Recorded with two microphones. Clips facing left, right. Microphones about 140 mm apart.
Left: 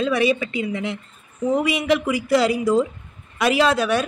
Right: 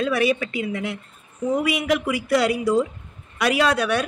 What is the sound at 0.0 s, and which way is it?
Speech, centre (ahead or behind).